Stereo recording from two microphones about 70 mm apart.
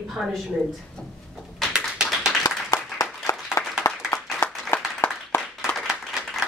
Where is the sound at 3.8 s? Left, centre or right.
Left.